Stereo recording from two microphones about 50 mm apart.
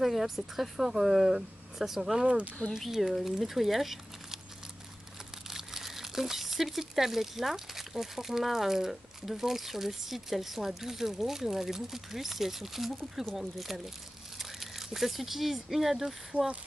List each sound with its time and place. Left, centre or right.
0.0 s speech: centre
2.2 s speech: right
2.8 s speech: centre
5.5 s speech: centre
14.4 s a sound: centre
15.0 s speech: centre